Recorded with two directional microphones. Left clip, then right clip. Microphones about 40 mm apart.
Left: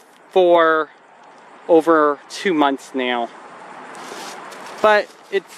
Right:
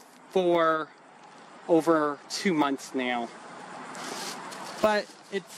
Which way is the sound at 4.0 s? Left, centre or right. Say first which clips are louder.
Left 3 dB; centre.